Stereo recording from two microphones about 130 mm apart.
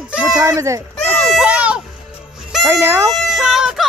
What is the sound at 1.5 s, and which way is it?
Music, 10° right (ahead or behind).